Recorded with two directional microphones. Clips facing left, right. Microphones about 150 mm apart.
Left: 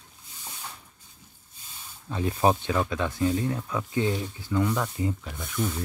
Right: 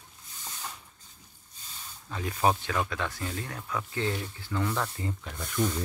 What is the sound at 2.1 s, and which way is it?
Speech, 25° left (ahead or behind).